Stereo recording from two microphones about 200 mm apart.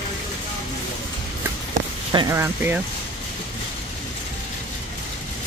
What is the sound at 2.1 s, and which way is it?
Speech, 15° right (ahead or behind).